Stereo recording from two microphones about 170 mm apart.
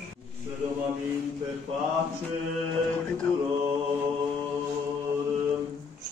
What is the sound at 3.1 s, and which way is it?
Music, 5° left (ahead or behind).